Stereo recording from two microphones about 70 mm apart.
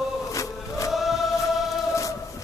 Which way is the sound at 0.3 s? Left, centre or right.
Left.